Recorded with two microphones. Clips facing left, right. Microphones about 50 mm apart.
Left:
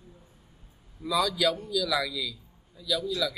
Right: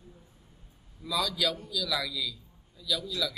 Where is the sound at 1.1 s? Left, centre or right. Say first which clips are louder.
Left 4 dB; centre.